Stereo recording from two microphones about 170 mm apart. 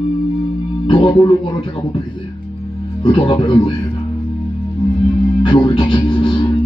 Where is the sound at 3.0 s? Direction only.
30° left (ahead or behind).